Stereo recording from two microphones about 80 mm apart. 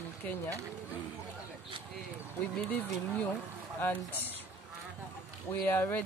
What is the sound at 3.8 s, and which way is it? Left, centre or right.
Speech, left.